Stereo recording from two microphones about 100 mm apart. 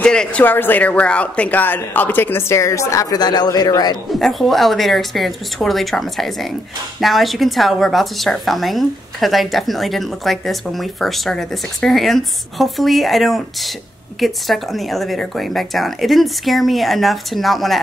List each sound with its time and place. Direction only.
0.0 s speech: 10° left (ahead or behind); by 3.9 s 40° left (ahead or behind)
4.1 s a woman's voice: centre (ahead or behind)